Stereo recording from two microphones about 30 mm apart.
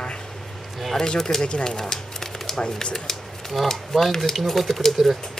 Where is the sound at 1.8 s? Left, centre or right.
Centre.